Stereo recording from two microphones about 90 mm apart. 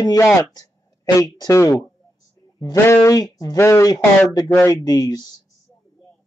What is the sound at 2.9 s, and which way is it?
Speech, 40° left (ahead or behind).